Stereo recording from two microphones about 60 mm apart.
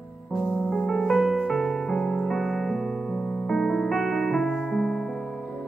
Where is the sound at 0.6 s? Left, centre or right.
Centre.